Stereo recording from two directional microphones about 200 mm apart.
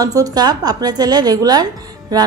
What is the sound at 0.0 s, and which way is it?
A woman's voice, 20° right (ahead or behind).